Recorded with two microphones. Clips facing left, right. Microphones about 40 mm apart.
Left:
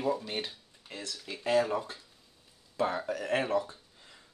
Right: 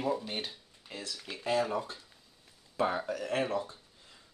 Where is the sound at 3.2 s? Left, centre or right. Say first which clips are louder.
Left 4 dB; left.